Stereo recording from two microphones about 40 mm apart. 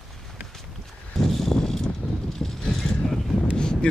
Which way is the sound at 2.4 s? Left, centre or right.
Centre.